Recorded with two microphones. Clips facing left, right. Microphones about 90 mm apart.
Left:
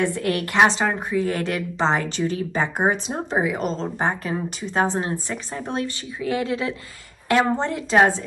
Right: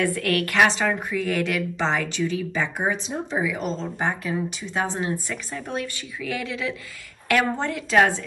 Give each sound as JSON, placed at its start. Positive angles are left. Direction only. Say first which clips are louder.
{"t": 0.0, "sound": "a woman's voice", "louder": "even", "side_deg": 25}